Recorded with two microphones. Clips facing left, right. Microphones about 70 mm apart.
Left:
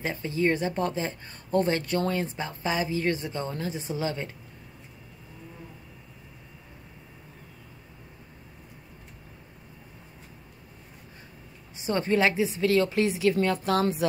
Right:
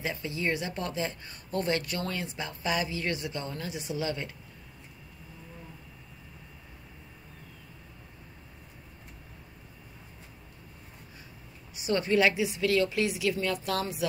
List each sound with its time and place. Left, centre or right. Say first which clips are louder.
0.0 s speech: left 5 dB; left
11.7 s speech: left 1 dB; left